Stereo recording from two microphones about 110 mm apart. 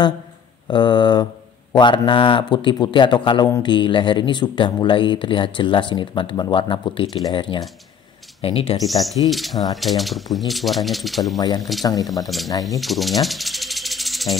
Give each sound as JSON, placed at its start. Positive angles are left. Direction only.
{"t": 0.7, "sound": "speech", "side_deg": 45}
{"t": 8.4, "sound": "speech", "side_deg": 60}
{"t": 8.8, "sound": "speech", "side_deg": 0}
{"t": 11.3, "sound": "speech", "side_deg": 35}
{"t": 12.3, "sound": "speech", "side_deg": 0}
{"t": 12.8, "sound": "music", "side_deg": 0}